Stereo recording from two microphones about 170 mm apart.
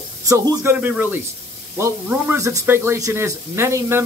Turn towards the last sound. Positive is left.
turn(degrees=-15)  # may be behind; listen again after turning